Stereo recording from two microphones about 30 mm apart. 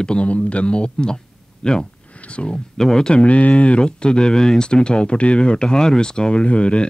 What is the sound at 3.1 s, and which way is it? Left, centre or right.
Speech, left.